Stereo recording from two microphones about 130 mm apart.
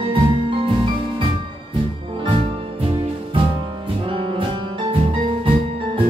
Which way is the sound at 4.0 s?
40° right (ahead or behind).